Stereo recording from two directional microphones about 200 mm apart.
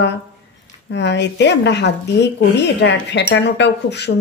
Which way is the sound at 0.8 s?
60° left (ahead or behind).